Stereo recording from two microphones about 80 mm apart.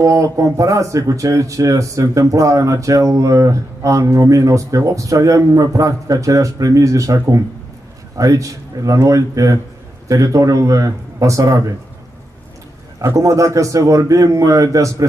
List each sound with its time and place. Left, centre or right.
0.0 s speech: right
13.0 s speech: right